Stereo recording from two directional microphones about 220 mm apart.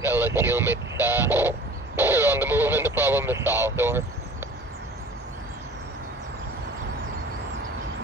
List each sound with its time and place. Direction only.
0.0 s speech: 10° right (ahead or behind)
2.0 s radio: 10° right (ahead or behind)